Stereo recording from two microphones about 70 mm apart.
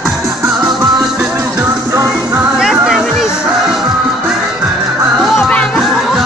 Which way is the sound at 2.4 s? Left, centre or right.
Centre.